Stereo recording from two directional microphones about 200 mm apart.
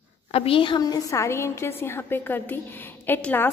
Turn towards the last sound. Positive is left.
turn(degrees=10)  # may be behind; listen again after turning